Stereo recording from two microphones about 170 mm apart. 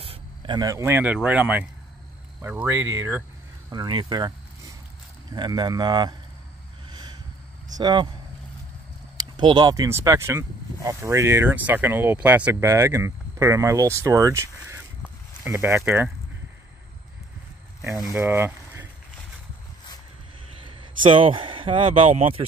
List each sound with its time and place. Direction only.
0.0 s speech: 30° right (ahead or behind); by 3.3 s 15° right (ahead or behind)
3.7 s speech: 25° right (ahead or behind)
6.9 s snort: 25° right (ahead or behind)
7.7 s speech: 25° right (ahead or behind)
9.1 s speech: 25° right (ahead or behind)
18.2 s boiling: 15° right (ahead or behind)
20.6 s speech: 30° right (ahead or behind)